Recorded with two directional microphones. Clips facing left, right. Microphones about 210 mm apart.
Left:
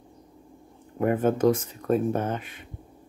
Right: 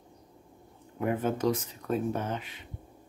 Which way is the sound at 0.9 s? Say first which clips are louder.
Left 6 dB; 50° left (ahead or behind).